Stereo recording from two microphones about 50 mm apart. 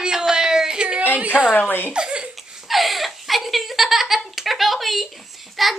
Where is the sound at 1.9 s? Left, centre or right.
Centre.